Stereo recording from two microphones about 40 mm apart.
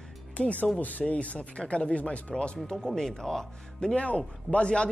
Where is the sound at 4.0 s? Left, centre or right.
Left.